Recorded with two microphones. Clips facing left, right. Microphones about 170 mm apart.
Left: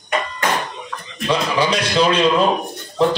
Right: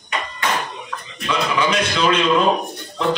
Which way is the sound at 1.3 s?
35° left (ahead or behind).